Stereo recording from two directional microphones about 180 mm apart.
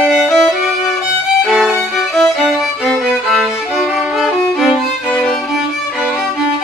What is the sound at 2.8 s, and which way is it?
Violin, centre (ahead or behind).